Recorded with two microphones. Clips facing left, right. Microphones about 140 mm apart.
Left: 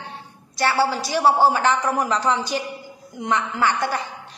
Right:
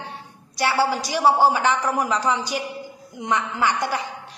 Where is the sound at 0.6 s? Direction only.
15° right (ahead or behind).